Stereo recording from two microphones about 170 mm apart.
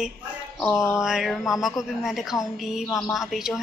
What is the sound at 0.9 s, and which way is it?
A woman's voice, 5° right (ahead or behind).